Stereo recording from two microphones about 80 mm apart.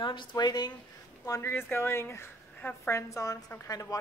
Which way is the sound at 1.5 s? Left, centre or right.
Left.